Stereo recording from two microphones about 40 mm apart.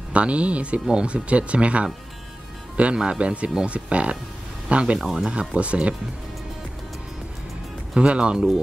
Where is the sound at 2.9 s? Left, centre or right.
Right.